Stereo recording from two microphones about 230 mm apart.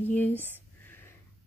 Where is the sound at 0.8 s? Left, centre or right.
Centre.